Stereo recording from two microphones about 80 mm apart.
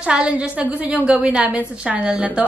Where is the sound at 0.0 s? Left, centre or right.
Centre.